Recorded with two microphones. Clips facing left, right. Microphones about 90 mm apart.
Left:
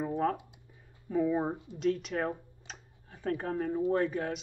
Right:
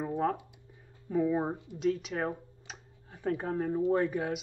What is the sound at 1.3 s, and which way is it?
Speech, 20° right (ahead or behind).